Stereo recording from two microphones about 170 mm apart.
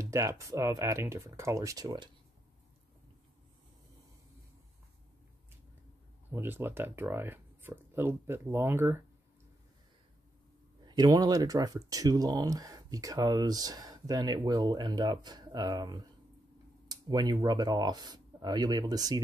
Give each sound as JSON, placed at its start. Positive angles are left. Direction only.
{"t": 0.0, "sound": "speech", "side_deg": -15}
{"t": 6.3, "sound": "speech", "side_deg": -15}
{"t": 10.9, "sound": "speech", "side_deg": -25}